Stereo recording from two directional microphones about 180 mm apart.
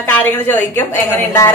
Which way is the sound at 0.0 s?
10° left (ahead or behind).